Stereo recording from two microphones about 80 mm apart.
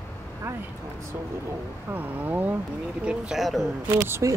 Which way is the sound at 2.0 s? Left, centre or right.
Right.